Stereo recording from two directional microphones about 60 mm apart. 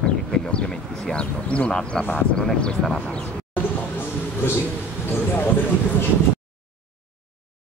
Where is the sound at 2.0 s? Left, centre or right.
Left.